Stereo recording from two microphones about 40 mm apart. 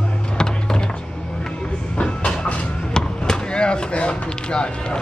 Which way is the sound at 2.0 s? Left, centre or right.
Left.